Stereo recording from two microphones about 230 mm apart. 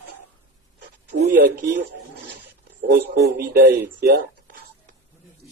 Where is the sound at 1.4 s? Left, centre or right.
Right.